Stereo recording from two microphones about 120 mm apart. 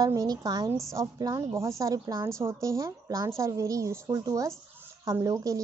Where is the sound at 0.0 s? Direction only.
30° right (ahead or behind).